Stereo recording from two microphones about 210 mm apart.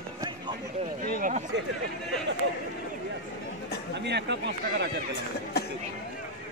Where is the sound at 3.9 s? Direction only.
55° right (ahead or behind).